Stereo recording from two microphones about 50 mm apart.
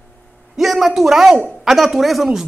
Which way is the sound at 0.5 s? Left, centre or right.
Centre.